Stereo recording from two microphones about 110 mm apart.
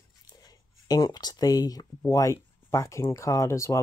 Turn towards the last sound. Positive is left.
turn(degrees=25)  # may be behind; listen again after turning